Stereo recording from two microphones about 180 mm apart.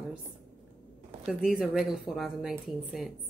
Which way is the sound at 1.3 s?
5° right (ahead or behind).